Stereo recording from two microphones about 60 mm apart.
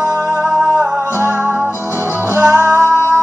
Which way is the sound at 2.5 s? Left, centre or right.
Right.